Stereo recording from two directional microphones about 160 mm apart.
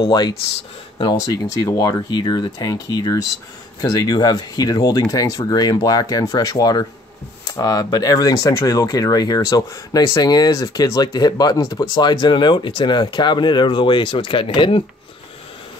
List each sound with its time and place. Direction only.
0.0 s speech: 25° left (ahead or behind)